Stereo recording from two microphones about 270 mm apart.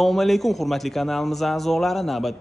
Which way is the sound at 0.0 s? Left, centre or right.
Centre.